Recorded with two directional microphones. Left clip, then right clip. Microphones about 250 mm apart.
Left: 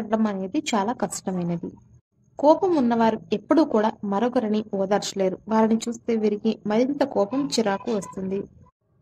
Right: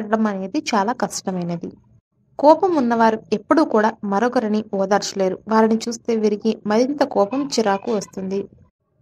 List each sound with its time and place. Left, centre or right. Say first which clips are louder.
0.1 s a woman's voice: right 4 dB; centre